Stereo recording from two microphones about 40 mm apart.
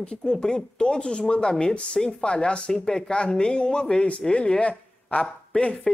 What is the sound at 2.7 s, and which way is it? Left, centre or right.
Speech, centre.